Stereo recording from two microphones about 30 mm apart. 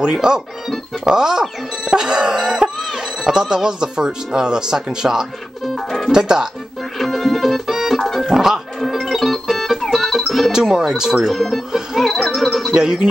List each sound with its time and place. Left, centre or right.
0.1 s speech: right
1.9 s music: right
2.8 s a sound: centre
3.3 s speech: right
5.8 s music: centre
6.1 s speech: right
7.0 s music: centre
8.3 s music: centre
8.7 s music: centre
10.5 s speech: centre
11.2 s speech: centre
12.0 s music: centre
12.7 s speech: right